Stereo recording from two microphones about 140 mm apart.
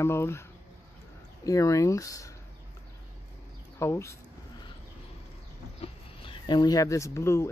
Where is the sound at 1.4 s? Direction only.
25° left (ahead or behind).